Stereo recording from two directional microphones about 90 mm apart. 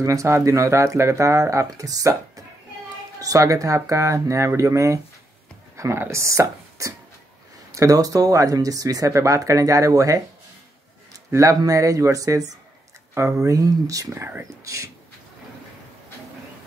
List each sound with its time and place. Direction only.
0.0 s speech: 35° right (ahead or behind)
11.2 s speech: 35° right (ahead or behind)